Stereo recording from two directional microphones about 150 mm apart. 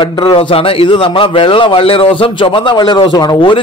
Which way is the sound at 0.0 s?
30° left (ahead or behind).